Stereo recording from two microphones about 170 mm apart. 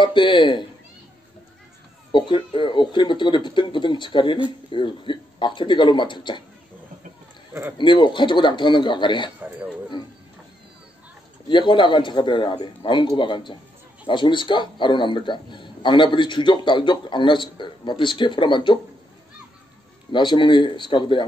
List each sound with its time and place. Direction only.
0.0 s a man's voice: 25° left (ahead or behind)
2.1 s a man's voice: 30° left (ahead or behind)
7.7 s a man's voice: 30° left (ahead or behind)
11.4 s a man's voice: 30° left (ahead or behind)
20.1 s a man's voice: 30° left (ahead or behind)